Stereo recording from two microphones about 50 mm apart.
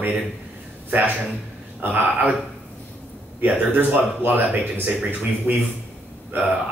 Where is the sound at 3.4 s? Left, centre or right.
Right.